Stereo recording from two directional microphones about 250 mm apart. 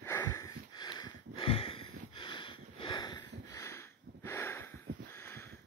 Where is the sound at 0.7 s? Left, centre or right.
Centre.